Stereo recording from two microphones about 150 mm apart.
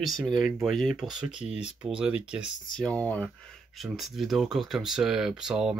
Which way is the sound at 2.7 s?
5° left (ahead or behind).